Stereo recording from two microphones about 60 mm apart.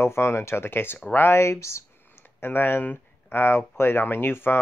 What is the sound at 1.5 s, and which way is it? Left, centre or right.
Speech, left.